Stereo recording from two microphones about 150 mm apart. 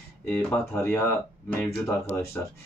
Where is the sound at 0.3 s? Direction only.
10° left (ahead or behind).